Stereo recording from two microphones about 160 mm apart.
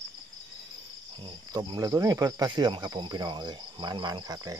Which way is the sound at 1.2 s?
30° right (ahead or behind).